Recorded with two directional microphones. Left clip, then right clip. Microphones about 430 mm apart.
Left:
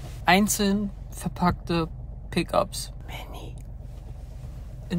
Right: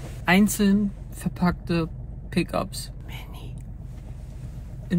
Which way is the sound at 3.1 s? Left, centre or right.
Centre.